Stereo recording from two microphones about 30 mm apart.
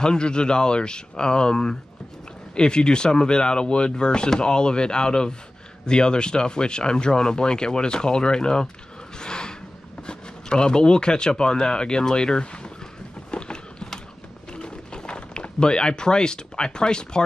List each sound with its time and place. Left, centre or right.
0.0 s speech: left
9.2 s a sound: left
10.0 s speech: left
13.3 s boat: left
14.5 s a sound: left
15.6 s speech: left